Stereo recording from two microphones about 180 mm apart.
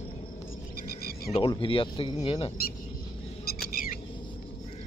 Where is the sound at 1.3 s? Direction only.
30° left (ahead or behind).